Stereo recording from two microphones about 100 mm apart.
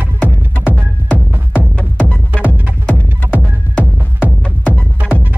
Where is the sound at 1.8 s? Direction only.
15° left (ahead or behind).